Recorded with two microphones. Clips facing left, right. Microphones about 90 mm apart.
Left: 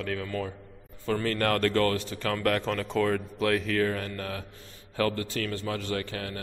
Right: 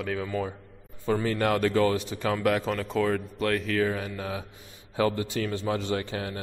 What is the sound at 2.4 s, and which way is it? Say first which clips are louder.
Speech: even; 5° right (ahead or behind).